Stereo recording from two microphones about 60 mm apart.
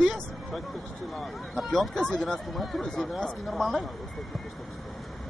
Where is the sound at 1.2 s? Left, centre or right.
Centre.